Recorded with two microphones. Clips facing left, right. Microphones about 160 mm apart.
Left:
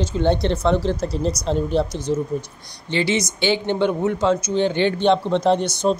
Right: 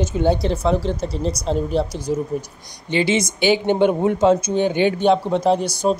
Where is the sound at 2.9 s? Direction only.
20° right (ahead or behind).